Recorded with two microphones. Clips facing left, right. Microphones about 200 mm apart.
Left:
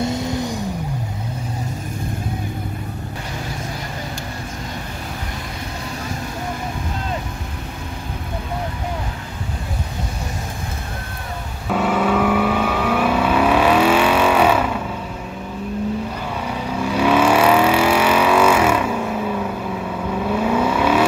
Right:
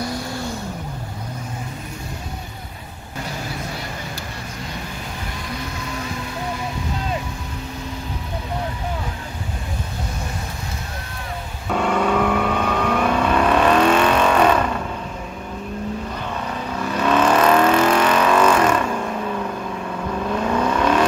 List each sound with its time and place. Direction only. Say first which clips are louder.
0.0 s vehicle: left 5 dB; 20° left (ahead or behind)
11.7 s vehicle: left 1 dB; 5° left (ahead or behind)
16.4 s vehicle: left 5 dB; 10° left (ahead or behind)